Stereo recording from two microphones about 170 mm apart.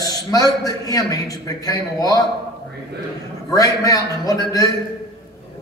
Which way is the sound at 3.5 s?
20° left (ahead or behind).